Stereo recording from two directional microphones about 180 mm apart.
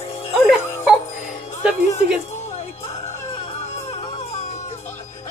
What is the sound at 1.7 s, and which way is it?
Music, 40° left (ahead or behind).